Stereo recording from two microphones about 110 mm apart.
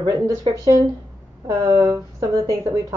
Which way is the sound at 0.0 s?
40° right (ahead or behind).